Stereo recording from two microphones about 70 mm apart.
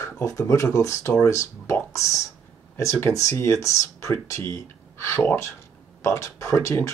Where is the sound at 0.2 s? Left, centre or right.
Left.